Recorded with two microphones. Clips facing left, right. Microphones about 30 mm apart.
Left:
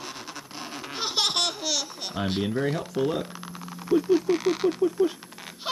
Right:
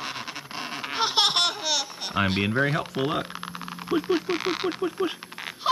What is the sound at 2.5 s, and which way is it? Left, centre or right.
Speech, right.